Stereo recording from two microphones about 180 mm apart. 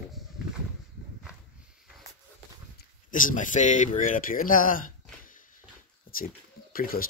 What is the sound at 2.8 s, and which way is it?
Speech, 50° left (ahead or behind).